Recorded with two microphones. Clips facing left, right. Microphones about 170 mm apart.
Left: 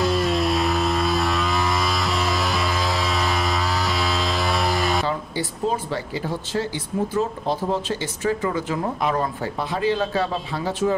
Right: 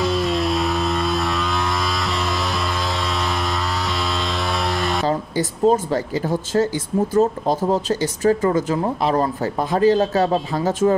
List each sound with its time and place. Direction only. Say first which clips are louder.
0.0 s vehicle: right 1 dB; centre (ahead or behind)
5.0 s speech: right 5 dB; 40° right (ahead or behind)